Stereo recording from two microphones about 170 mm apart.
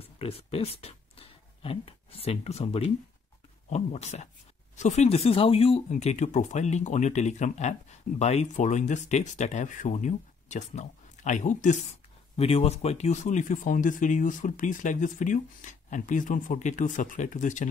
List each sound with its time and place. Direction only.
0.2 s speech: 35° left (ahead or behind)
12.4 s speech: 35° left (ahead or behind)